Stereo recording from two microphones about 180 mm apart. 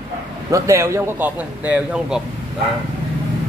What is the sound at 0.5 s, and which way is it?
A man's voice, 15° right (ahead or behind).